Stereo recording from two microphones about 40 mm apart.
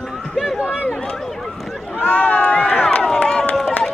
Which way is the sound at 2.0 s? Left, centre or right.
Left.